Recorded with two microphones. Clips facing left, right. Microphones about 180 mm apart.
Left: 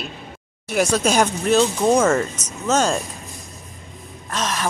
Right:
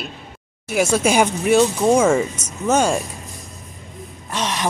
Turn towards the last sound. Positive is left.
turn(degrees=-15)  # may be behind; listen again after turning